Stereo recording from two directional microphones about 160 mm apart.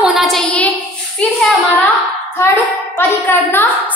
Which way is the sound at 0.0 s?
Centre (ahead or behind).